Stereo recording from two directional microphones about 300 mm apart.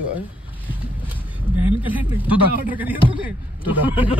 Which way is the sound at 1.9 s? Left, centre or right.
Centre.